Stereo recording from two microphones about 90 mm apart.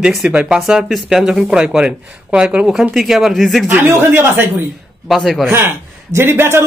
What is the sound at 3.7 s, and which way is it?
Speech, 20° right (ahead or behind).